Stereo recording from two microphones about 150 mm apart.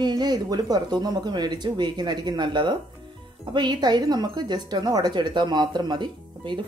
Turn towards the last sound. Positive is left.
turn(degrees=-30)  # may be behind; listen again after turning